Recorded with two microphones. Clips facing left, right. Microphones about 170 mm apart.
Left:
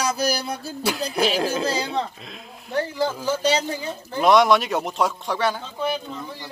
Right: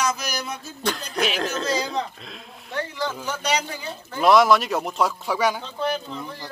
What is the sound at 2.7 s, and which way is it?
Speech, 35° left (ahead or behind).